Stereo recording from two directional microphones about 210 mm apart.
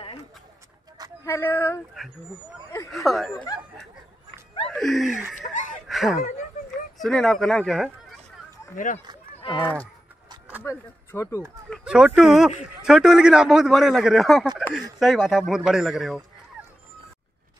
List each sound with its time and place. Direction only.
1.2 s speech: 10° left (ahead or behind)
2.9 s a man's voice: centre (ahead or behind)
4.6 s music: centre (ahead or behind)
5.9 s a sound: centre (ahead or behind)
7.0 s a man's voice: centre (ahead or behind)
8.7 s speech: 40° left (ahead or behind)
9.4 s speech: 25° left (ahead or behind)
10.6 s speech: 10° left (ahead or behind)
11.7 s a man's voice: 5° right (ahead or behind)